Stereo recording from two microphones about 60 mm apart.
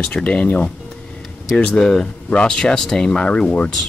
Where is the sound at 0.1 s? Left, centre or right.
Left.